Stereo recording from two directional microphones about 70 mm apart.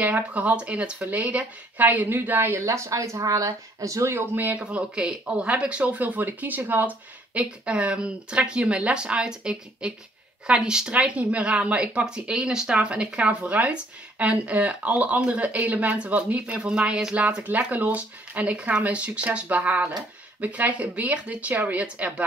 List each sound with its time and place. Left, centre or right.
0.0 s speech: right
2.6 s speech: right
4.4 s speech: right